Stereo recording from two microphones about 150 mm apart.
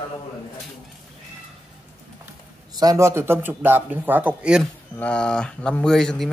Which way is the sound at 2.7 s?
25° right (ahead or behind).